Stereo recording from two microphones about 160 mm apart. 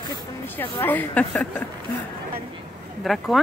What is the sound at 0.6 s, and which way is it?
Speech, 10° left (ahead or behind).